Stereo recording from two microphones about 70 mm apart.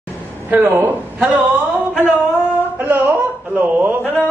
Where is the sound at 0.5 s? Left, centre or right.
Right.